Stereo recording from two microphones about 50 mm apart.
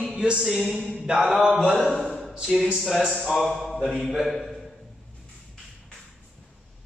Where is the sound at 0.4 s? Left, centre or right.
Centre.